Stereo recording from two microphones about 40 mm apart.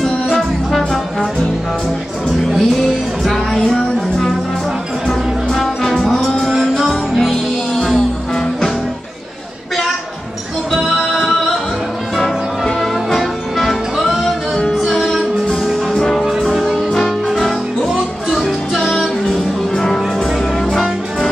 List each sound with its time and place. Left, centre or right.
0.0 s music: centre
2.4 s music: centre
7.2 s music: centre
10.7 s music: centre
12.6 s music: centre
14.0 s music: centre
16.0 s music: centre